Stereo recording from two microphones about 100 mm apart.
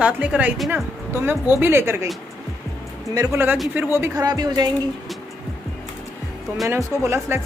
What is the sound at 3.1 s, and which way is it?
Speech, 35° right (ahead or behind).